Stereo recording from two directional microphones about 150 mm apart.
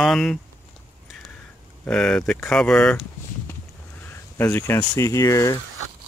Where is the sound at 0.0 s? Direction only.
5° left (ahead or behind).